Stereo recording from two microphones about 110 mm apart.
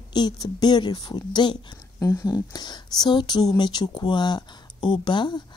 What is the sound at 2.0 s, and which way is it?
Speech, 30° left (ahead or behind).